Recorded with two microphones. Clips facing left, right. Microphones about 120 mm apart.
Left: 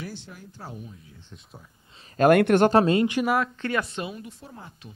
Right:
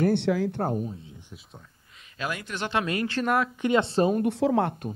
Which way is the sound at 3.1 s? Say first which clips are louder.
Left 2 dB; 10° left (ahead or behind).